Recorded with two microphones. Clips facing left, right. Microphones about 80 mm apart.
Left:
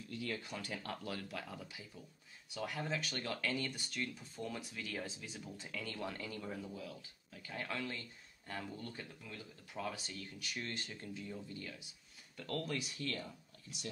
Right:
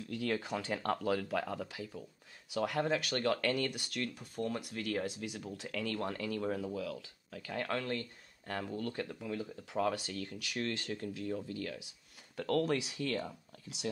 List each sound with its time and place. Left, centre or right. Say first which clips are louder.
0.0 s speech: right 7 dB; right